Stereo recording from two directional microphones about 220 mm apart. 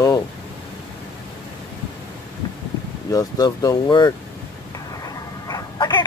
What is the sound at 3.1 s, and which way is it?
Speech, 15° left (ahead or behind).